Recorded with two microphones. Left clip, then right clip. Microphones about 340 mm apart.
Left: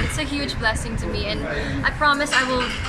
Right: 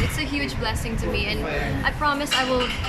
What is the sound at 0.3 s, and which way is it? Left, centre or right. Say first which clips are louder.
Speech: left 3 dB; centre.